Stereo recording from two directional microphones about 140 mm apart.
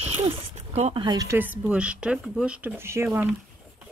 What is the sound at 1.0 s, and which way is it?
Speech, 25° right (ahead or behind).